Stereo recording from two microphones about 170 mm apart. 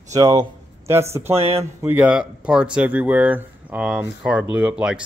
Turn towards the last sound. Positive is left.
turn(degrees=-5)  # may be behind; listen again after turning